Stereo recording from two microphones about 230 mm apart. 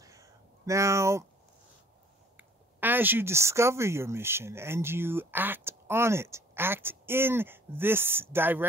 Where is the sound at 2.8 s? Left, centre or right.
Centre.